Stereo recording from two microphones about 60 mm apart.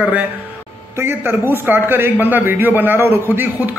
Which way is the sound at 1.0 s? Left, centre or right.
Right.